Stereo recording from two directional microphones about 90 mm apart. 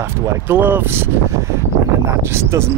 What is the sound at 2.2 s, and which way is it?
Speech, 30° right (ahead or behind).